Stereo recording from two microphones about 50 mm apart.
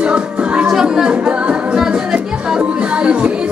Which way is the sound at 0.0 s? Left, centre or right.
Right.